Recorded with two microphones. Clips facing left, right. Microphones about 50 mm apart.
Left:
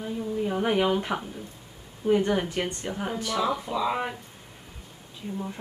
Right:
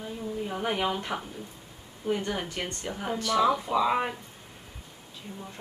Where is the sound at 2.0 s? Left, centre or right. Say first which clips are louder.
Left 7 dB; centre.